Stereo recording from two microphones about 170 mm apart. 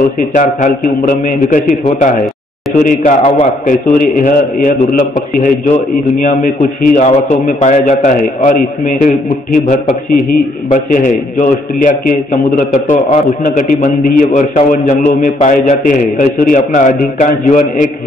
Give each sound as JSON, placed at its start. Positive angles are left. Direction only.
{"t": 0.3, "sound": "a man's voice", "side_deg": 50}